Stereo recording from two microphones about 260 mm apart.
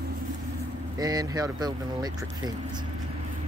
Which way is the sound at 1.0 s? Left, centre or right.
Centre.